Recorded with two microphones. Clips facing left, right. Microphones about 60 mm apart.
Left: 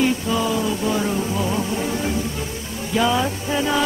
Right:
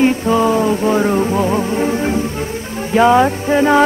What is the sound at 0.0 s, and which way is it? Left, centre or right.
Music, right.